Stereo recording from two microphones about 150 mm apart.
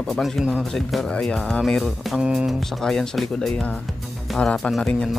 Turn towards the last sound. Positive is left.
turn(degrees=5)  # may be behind; listen again after turning